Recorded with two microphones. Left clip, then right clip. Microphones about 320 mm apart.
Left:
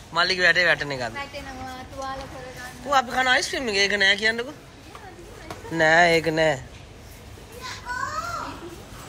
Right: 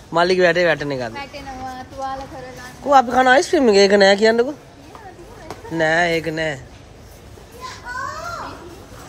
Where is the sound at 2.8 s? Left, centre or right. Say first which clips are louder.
Right 8 dB; centre.